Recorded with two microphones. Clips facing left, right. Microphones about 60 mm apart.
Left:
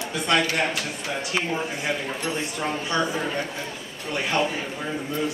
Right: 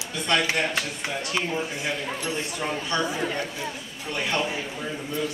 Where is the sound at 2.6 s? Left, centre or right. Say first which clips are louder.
Left 2 dB; centre.